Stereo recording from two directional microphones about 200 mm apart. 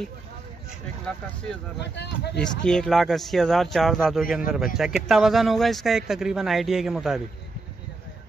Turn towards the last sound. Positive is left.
turn(degrees=0)  # may be behind; listen again after turning